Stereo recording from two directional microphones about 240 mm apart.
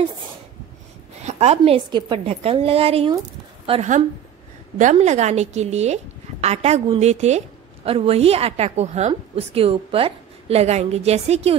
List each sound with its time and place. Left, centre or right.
1.2 s a woman's voice: right